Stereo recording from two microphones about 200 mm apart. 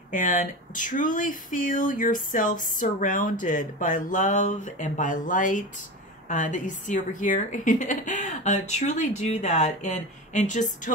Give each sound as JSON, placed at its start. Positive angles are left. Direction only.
{"t": 0.1, "sound": "speech", "side_deg": 40}